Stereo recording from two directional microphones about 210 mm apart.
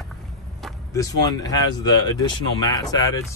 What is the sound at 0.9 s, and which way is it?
Speech, 15° left (ahead or behind).